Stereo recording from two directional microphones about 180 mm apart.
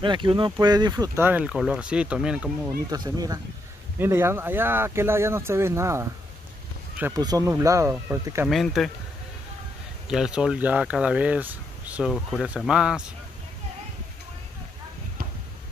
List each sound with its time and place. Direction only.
0.0 s speech: 25° right (ahead or behind); by 2.7 s 5° right (ahead or behind)
2.9 s speech: 20° right (ahead or behind)
7.2 s speech: 20° right (ahead or behind)
8.5 s speech: centre (ahead or behind)
10.0 s speech: 5° right (ahead or behind)